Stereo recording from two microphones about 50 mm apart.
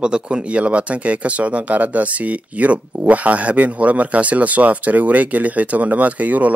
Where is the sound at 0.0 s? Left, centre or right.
Centre.